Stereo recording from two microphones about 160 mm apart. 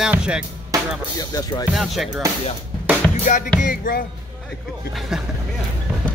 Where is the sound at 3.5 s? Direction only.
60° left (ahead or behind).